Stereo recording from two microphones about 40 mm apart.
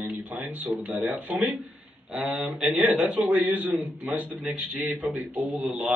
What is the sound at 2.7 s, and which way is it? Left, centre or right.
A man's voice, right.